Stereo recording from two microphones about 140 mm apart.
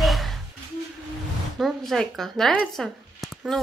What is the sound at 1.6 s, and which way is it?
A woman's voice, centre (ahead or behind).